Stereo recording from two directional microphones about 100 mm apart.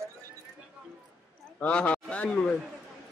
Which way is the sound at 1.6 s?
10° left (ahead or behind).